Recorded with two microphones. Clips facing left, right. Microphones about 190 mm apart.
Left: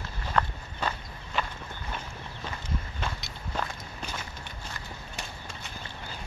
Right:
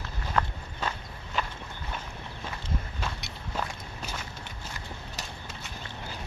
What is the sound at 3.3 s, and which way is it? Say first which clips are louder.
Walk: even; 5° right (ahead or behind).